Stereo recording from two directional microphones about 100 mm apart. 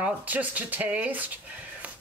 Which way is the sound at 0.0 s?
15° right (ahead or behind).